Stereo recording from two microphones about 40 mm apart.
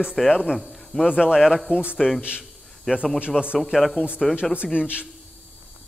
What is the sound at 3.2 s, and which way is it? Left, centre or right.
Speech, right.